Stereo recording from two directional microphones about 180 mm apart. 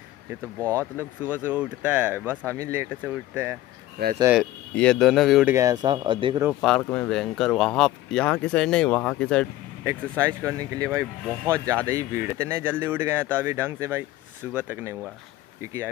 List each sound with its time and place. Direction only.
0.7 s speech: 15° right (ahead or behind)
4.0 s speech: 60° right (ahead or behind)
4.7 s speech: 5° left (ahead or behind)
5.5 s speech: 20° right (ahead or behind)
6.6 s speech: 5° left (ahead or behind)
9.8 s speech: 15° right (ahead or behind)